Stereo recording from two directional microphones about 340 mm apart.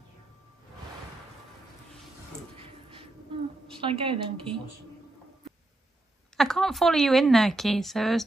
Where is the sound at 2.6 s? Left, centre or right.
Centre.